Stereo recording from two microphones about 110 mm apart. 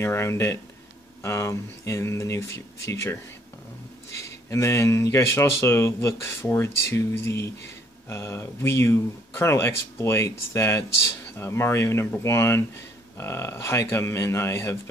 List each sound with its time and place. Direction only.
0.0 s speech: 25° left (ahead or behind)
4.2 s speech: 25° left (ahead or behind)